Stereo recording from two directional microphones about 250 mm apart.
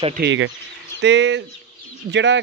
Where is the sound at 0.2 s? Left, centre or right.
Right.